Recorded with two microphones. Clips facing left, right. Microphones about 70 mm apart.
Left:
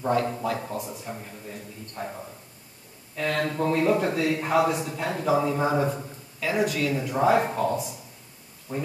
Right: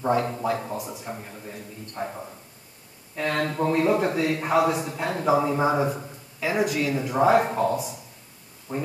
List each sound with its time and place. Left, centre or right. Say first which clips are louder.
0.0 s a man's voice: right 1 dB; centre
3.3 s a man's voice: right 1 dB; centre
8.7 s a man's voice: right 1 dB; centre